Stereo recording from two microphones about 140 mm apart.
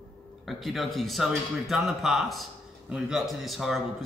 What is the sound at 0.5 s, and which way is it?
A man's voice, centre (ahead or behind).